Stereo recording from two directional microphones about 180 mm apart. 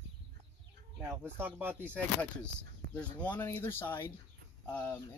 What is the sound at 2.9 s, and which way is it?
Speech, 10° left (ahead or behind).